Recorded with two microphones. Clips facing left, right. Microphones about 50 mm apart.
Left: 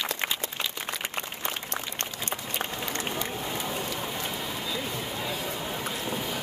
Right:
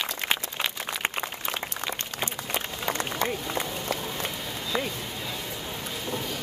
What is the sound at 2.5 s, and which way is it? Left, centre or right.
Run, right.